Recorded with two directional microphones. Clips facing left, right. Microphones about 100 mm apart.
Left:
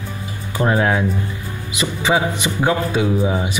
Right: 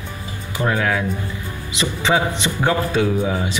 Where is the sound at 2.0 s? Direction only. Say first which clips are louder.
Left 1 dB; 15° left (ahead or behind).